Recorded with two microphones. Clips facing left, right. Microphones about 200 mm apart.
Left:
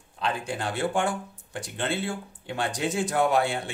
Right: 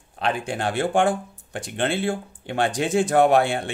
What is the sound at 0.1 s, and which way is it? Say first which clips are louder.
Speech: right 4 dB; 75° right (ahead or behind).